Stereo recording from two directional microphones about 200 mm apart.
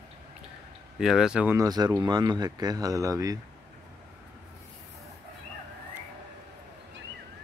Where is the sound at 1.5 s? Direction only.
20° right (ahead or behind).